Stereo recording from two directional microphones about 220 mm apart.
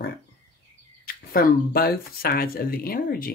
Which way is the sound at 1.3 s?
45° left (ahead or behind).